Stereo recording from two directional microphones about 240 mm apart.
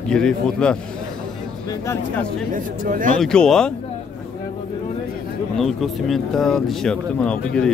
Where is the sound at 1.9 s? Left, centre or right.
Centre.